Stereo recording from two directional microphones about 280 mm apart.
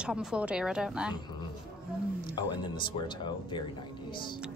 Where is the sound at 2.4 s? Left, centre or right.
Centre.